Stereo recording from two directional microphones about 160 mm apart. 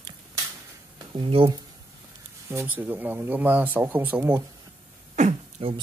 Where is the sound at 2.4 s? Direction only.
15° right (ahead or behind).